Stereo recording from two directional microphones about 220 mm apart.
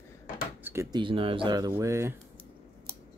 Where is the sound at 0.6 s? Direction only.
15° right (ahead or behind).